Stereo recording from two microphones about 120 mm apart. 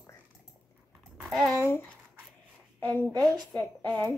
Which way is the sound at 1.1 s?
Centre (ahead or behind).